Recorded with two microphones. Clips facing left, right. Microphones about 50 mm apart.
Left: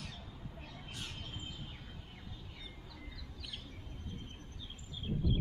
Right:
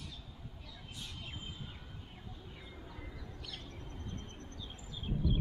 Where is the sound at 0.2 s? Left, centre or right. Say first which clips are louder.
Left 3 dB; left.